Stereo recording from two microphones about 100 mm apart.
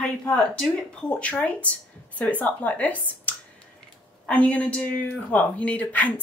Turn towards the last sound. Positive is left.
turn(degrees=15)  # may be behind; listen again after turning